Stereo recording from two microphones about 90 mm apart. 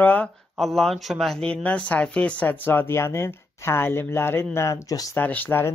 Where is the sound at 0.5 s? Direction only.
Centre (ahead or behind); by 5.2 s 40° left (ahead or behind).